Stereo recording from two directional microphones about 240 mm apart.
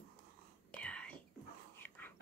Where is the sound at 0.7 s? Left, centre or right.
Centre.